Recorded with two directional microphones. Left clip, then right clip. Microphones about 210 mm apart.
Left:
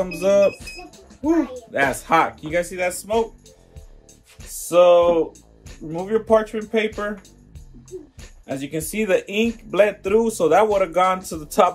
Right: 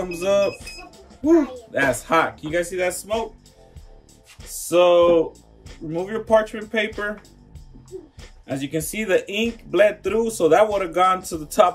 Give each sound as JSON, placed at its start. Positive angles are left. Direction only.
{"t": 0.0, "sound": "speech", "side_deg": 25}
{"t": 0.6, "sound": "music", "side_deg": -5}
{"t": 1.2, "sound": "speech", "side_deg": 25}
{"t": 4.6, "sound": "speech", "side_deg": 20}
{"t": 8.5, "sound": "speech", "side_deg": 20}